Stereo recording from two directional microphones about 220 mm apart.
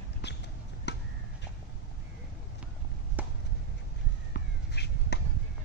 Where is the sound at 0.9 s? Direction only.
50° left (ahead or behind).